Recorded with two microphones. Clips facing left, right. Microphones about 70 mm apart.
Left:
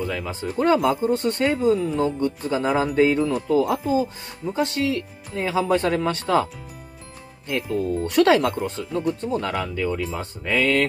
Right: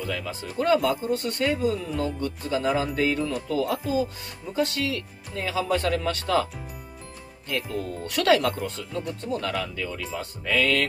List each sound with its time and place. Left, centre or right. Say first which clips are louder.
0.0 s speech: left 4 dB; left